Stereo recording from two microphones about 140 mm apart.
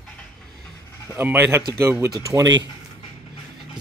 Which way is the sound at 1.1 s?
15° right (ahead or behind).